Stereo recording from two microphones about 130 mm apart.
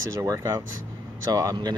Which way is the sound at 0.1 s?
25° right (ahead or behind).